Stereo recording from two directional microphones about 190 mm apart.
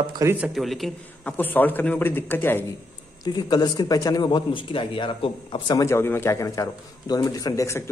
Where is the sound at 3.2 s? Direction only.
20° left (ahead or behind).